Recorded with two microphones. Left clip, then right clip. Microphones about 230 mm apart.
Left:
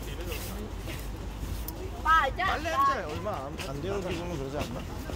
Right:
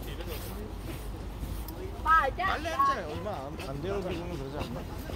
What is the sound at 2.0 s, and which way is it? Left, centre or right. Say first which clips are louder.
Vehicle: left 1 dB; left.